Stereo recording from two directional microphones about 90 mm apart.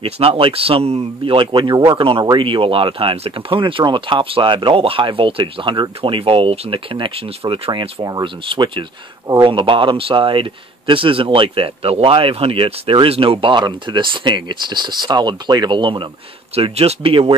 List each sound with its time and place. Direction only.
0.0 s speech: 90° right; by 1.8 s 65° right (ahead or behind)
2.0 s speech: 90° right
2.2 s speech: 70° right (ahead or behind); by 7.9 s 90° right
8.0 s speech: 45° right (ahead or behind)
8.5 s speech: 65° right (ahead or behind)
16.5 s speech: 85° right